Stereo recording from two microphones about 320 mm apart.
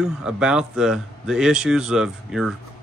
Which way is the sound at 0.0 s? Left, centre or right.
Centre.